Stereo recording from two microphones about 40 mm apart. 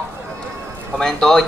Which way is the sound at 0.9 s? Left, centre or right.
Centre.